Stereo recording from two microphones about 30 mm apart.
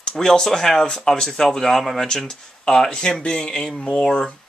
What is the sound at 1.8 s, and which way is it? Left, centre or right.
Speech, centre.